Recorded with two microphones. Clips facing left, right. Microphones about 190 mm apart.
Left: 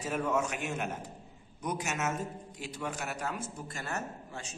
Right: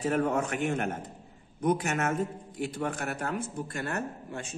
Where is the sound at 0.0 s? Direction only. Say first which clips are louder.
Right 4 dB; 55° right (ahead or behind).